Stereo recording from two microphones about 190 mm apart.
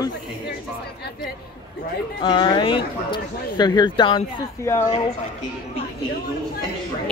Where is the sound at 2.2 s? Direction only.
25° left (ahead or behind).